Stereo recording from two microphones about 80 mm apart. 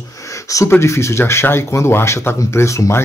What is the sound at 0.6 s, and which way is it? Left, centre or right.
Speech, left.